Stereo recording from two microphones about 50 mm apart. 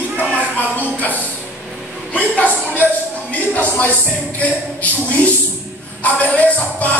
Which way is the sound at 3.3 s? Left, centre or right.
Left.